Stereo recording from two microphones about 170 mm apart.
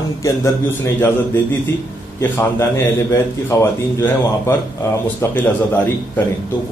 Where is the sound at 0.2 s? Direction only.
15° left (ahead or behind).